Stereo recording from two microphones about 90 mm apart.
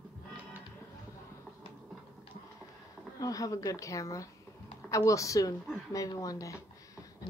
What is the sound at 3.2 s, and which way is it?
A woman's voice, 40° left (ahead or behind).